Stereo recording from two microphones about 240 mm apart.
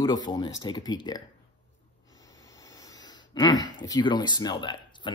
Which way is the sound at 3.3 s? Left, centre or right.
Centre.